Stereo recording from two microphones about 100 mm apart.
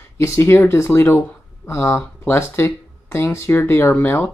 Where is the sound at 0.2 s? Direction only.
25° left (ahead or behind).